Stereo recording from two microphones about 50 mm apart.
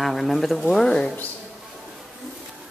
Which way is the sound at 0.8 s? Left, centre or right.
Left.